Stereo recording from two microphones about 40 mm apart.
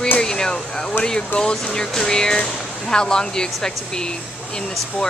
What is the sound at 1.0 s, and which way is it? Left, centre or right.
Speech, centre.